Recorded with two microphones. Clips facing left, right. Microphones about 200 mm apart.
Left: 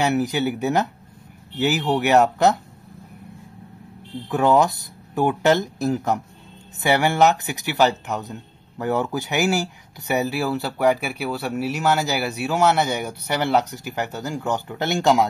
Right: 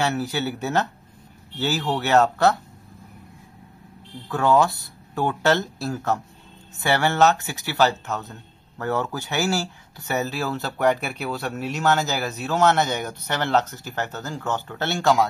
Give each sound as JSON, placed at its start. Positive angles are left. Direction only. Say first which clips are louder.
{"t": 0.0, "sound": "speech", "louder": "left 4 dB", "side_deg": 15}
{"t": 4.3, "sound": "speech", "louder": "left 2 dB", "side_deg": 15}